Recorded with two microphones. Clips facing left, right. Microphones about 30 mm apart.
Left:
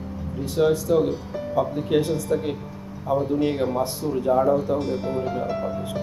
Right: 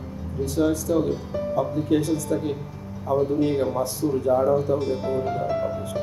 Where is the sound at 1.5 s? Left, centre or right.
Left.